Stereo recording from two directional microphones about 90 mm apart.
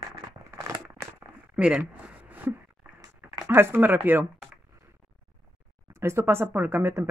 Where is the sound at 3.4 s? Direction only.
25° right (ahead or behind).